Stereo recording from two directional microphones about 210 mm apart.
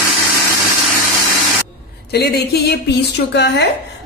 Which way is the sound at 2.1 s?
50° left (ahead or behind).